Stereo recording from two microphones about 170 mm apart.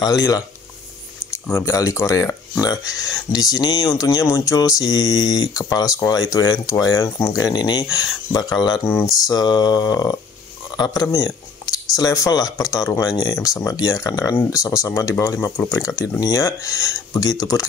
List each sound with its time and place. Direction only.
0.0 s speech: 20° left (ahead or behind)